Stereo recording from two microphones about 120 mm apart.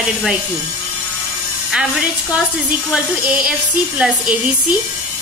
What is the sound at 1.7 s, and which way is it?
A woman's voice, 5° right (ahead or behind).